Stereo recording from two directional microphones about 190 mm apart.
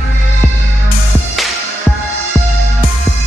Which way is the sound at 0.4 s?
5° left (ahead or behind).